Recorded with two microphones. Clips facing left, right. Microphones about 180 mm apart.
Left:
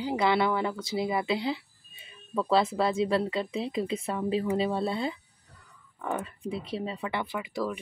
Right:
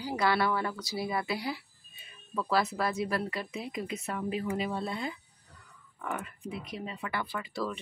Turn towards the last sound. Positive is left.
turn(degrees=15)  # may be behind; listen again after turning